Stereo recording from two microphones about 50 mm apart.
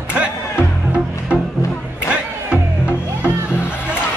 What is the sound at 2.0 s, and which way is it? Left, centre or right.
Music, right.